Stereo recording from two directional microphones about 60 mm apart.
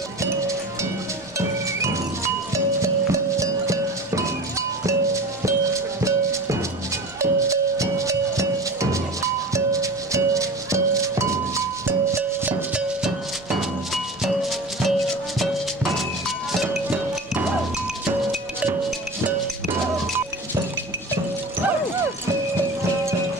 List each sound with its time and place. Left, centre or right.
1.8 s music: right
7.2 s music: right
13.6 s music: centre